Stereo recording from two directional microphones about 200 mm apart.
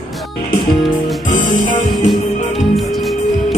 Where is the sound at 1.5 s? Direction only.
40° left (ahead or behind).